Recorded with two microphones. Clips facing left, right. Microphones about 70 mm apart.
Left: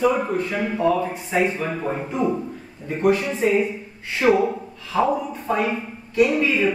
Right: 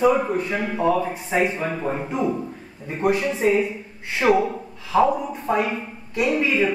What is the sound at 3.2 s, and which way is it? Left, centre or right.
Speech, centre.